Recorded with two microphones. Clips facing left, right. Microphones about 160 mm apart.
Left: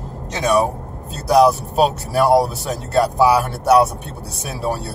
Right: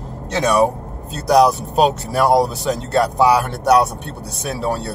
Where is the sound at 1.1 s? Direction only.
5° left (ahead or behind).